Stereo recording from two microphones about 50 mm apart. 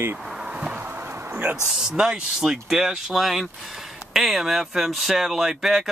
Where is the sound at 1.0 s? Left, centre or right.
Right.